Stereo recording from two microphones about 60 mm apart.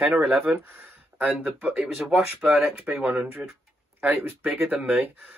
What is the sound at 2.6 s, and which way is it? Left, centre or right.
Speech, right.